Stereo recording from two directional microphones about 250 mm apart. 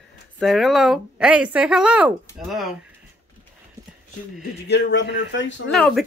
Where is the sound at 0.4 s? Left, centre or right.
Centre.